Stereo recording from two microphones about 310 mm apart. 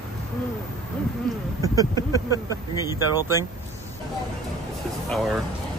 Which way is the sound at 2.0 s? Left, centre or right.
Centre.